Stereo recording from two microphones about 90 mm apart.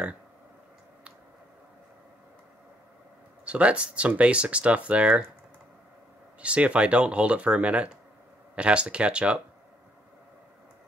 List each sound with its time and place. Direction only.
3.4 s speech: 15° right (ahead or behind)
6.4 s speech: 15° right (ahead or behind)